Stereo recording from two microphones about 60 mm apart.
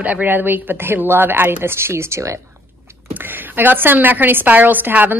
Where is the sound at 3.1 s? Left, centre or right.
Right.